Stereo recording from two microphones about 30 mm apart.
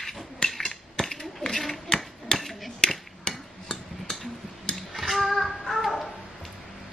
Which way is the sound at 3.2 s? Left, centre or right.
Left.